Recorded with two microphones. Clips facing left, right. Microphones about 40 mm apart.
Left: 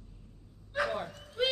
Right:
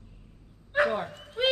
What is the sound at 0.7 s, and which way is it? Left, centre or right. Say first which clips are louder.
Dog: right 7 dB; right.